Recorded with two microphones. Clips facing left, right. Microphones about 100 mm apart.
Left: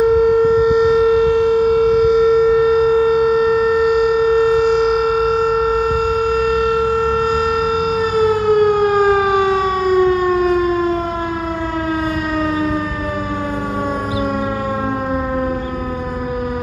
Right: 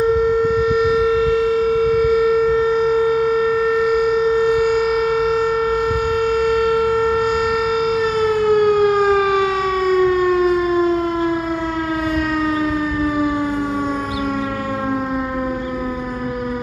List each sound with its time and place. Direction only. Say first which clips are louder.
0.7 s civil defense siren: left 3 dB; 20° left (ahead or behind)
8.2 s civil defense siren: left 3 dB; 5° left (ahead or behind)